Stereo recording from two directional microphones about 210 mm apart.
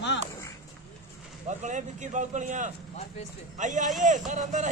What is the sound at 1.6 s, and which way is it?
Speech, 35° right (ahead or behind).